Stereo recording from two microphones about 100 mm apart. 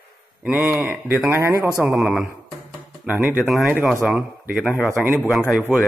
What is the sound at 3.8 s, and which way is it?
Speech, 5° right (ahead or behind).